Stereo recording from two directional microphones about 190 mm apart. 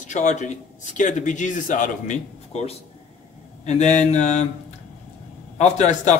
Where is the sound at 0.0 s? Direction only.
40° left (ahead or behind).